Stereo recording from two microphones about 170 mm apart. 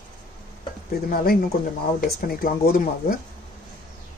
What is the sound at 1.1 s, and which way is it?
Speech, 60° left (ahead or behind).